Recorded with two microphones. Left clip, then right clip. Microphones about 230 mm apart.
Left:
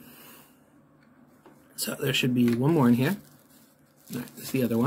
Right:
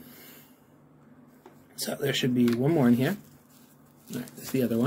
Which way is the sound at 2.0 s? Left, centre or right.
Centre.